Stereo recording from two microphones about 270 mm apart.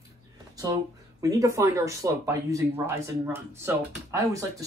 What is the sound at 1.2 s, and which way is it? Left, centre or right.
Speech, centre.